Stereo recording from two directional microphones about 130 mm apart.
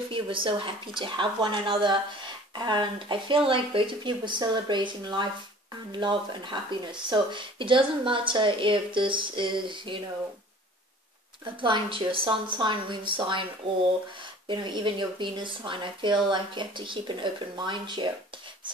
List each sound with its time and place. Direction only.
0.1 s speech: 40° right (ahead or behind)
11.4 s speech: 40° right (ahead or behind)
14.5 s speech: 35° right (ahead or behind)